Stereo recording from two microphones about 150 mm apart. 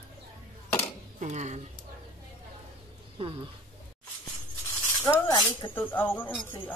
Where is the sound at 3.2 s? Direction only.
40° right (ahead or behind).